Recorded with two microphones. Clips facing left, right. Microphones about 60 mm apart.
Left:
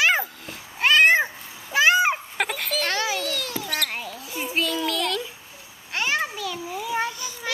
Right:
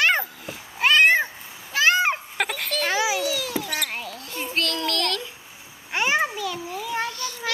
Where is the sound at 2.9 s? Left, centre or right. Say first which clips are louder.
Right 3 dB; centre.